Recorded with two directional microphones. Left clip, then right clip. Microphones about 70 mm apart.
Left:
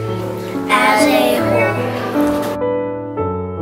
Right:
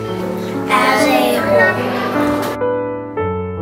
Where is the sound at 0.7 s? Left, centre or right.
Centre.